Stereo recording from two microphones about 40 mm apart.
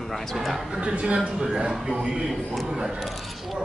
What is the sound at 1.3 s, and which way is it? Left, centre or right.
Speech, centre.